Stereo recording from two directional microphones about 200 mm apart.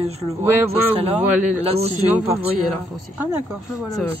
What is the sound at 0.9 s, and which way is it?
A man's voice, 30° right (ahead or behind).